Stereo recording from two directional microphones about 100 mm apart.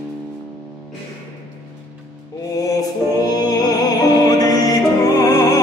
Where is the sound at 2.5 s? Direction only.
35° left (ahead or behind).